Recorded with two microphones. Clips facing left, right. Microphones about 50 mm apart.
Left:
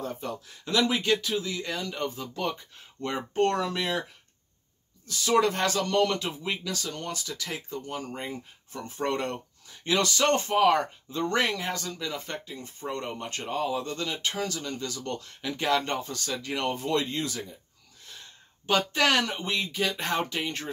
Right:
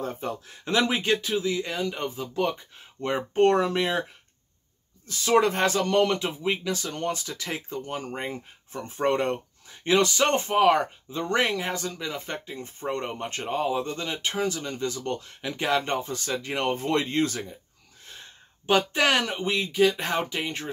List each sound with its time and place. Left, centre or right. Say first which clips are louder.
0.0 s speech: right 3 dB; right
5.0 s speech: right 2 dB; right
12.5 s speech: right 6 dB; right
18.7 s speech: right 2 dB; centre